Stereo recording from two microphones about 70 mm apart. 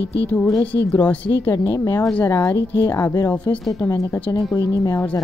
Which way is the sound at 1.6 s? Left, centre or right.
Left.